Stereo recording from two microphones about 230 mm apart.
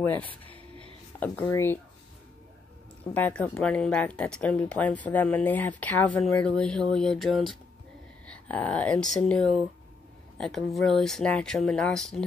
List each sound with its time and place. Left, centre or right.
0.0 s speech: centre
3.0 s speech: centre